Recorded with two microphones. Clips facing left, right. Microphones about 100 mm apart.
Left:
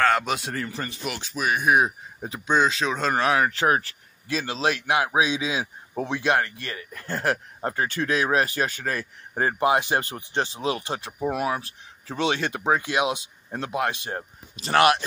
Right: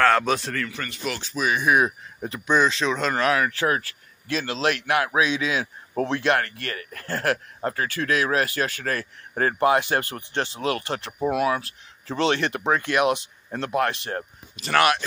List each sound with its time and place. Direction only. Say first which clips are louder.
0.0 s a man's voice: right 2 dB; 5° left (ahead or behind)
0.5 s a man's voice: even; 25° left (ahead or behind)
12.2 s speech: right 2 dB; 15° left (ahead or behind)
14.6 s a man's voice: left 1 dB; 30° left (ahead or behind)